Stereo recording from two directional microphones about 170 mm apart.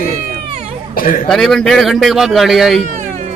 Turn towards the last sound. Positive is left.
turn(degrees=-40)  # may be behind; listen again after turning